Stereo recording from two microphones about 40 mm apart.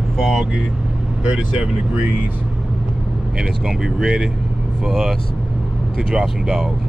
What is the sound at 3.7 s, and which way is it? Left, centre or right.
Speech, centre.